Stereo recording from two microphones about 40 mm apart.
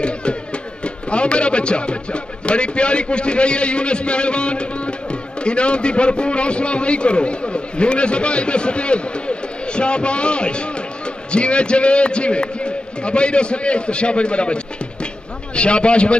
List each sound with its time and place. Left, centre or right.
0.0 s music: left
0.8 s a man's voice: left